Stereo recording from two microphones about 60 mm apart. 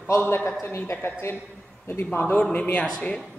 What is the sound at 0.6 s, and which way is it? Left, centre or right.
Speech, left.